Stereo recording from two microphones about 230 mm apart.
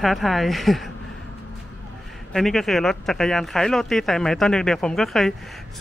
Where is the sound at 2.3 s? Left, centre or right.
Centre.